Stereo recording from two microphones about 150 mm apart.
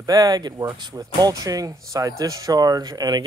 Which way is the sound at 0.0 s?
25° right (ahead or behind).